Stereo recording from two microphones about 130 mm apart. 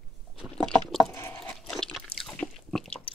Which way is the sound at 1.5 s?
5° left (ahead or behind).